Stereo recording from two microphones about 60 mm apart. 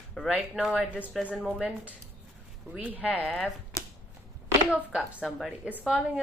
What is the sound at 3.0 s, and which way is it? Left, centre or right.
Speech, left.